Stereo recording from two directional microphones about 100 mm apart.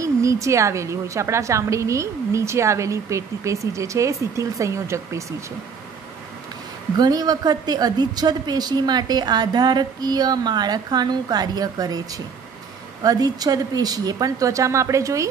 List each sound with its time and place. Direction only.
0.0 s a woman's voice: 30° right (ahead or behind)
7.0 s a woman's voice: 40° right (ahead or behind)
13.0 s a woman's voice: 40° right (ahead or behind)